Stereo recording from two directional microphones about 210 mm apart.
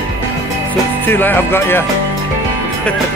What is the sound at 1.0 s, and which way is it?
Speech, 10° left (ahead or behind).